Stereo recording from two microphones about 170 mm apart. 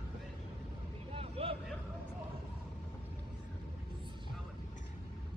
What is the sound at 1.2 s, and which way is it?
Vehicle, 35° right (ahead or behind).